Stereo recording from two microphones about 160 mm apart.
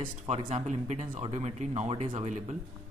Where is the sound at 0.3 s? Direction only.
40° right (ahead or behind).